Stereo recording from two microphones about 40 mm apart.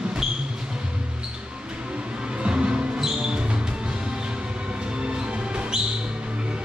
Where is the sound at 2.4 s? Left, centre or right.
Right.